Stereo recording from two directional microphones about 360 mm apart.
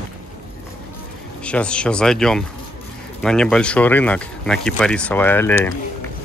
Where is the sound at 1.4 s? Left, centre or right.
Centre.